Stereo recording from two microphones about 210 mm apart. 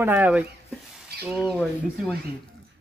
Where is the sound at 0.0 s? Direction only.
10° right (ahead or behind).